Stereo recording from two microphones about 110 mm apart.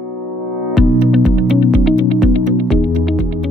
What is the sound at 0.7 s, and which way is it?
Music, centre (ahead or behind).